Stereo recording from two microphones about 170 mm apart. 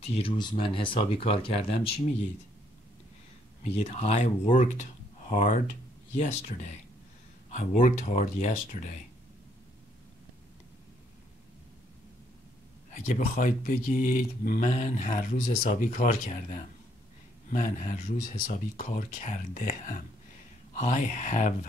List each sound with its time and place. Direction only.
0.0 s speech: 35° left (ahead or behind)
3.6 s speech: 40° left (ahead or behind)
12.9 s speech: 45° left (ahead or behind)